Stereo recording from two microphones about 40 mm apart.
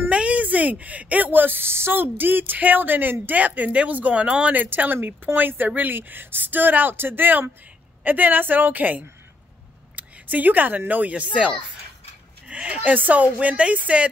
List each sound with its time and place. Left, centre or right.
0.1 s a sound: right
1.3 s speech: right
4.6 s speech: right
9.9 s a sound: right
10.9 s speech: right
12.8 s speech: right